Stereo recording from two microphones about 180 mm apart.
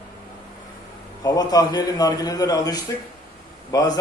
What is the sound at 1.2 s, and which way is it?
A man's voice, 20° left (ahead or behind).